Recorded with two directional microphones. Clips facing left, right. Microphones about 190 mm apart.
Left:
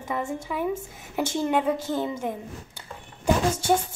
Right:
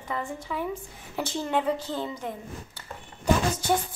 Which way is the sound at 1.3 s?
10° left (ahead or behind).